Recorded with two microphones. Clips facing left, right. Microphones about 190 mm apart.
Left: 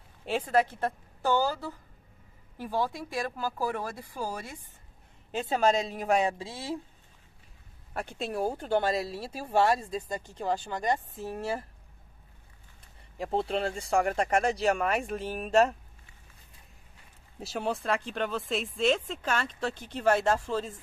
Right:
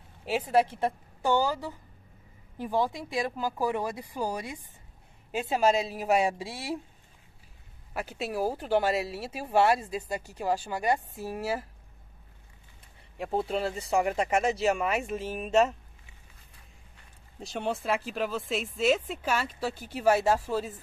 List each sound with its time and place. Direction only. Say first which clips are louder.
0.2 s speech: right 1 dB; 5° right (ahead or behind)
7.9 s speech: right 1 dB; 5° right (ahead or behind)
13.2 s speech: even; centre (ahead or behind)
17.4 s speech: even; 5° left (ahead or behind)